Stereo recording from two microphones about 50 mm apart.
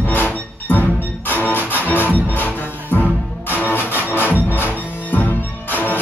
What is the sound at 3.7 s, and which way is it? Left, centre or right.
Music, left.